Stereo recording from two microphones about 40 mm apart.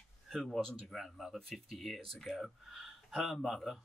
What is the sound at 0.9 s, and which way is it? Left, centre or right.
Speech, centre.